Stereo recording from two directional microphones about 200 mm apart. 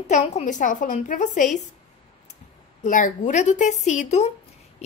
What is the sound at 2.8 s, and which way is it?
A woman's voice, 40° left (ahead or behind).